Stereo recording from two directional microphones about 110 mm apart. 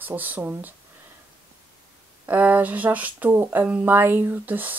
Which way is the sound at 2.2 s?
15° right (ahead or behind).